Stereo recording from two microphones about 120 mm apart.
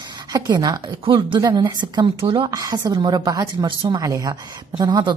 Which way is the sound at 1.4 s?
35° right (ahead or behind).